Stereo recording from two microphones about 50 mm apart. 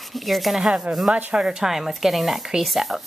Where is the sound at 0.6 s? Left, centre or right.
Centre.